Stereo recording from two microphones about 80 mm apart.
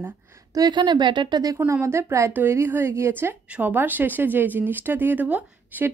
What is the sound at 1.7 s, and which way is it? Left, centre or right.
A woman's voice, right.